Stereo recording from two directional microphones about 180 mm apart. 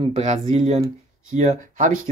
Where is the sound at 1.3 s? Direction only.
40° right (ahead or behind).